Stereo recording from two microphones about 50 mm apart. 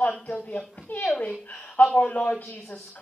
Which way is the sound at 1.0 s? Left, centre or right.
Left.